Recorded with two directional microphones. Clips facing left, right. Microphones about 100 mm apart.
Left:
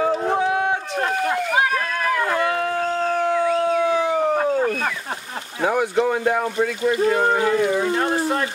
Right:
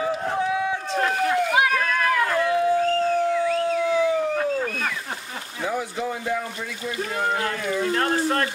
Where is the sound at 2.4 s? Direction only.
70° left (ahead or behind).